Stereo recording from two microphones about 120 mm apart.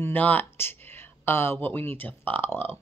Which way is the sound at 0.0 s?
15° left (ahead or behind).